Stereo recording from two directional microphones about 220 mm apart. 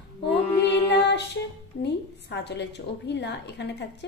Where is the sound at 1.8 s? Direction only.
50° left (ahead or behind).